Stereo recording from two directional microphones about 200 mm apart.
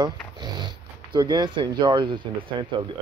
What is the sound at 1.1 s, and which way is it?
Speech, 20° right (ahead or behind).